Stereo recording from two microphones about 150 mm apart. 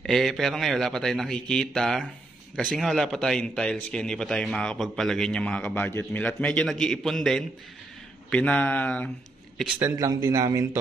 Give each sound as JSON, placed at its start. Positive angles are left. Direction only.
{"t": 0.0, "sound": "a man's voice", "side_deg": 0}
{"t": 9.8, "sound": "speech", "side_deg": -20}